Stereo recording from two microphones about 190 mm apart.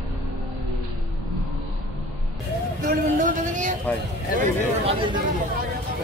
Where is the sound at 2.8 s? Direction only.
45° right (ahead or behind).